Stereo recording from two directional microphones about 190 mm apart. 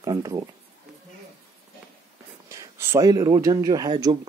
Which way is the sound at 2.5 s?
15° right (ahead or behind).